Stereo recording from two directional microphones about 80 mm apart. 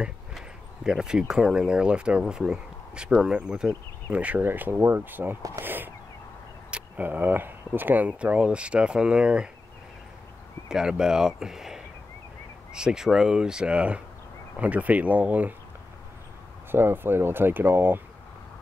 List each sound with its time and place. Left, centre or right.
0.8 s speech: centre
10.7 s speech: centre
16.7 s speech: right